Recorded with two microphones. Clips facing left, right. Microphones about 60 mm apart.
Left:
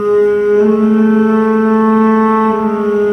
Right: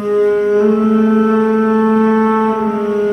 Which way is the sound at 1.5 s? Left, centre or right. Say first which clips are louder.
Left 2 dB; left.